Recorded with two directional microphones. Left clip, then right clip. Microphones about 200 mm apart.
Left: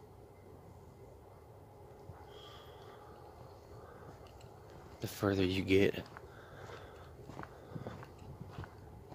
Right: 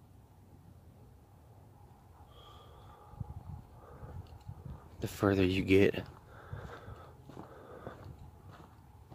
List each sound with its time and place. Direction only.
5.0 s speech: 30° right (ahead or behind)